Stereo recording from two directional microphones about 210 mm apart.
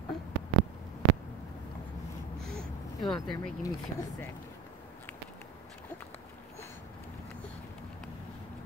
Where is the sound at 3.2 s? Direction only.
20° left (ahead or behind).